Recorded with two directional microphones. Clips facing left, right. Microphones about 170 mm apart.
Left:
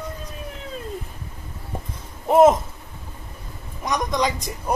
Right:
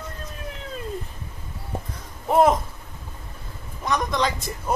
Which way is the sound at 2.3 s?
20° left (ahead or behind).